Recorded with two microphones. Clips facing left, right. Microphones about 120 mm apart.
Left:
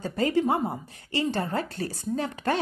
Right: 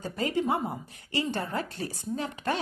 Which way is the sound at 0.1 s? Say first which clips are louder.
Left 4 dB; 40° left (ahead or behind).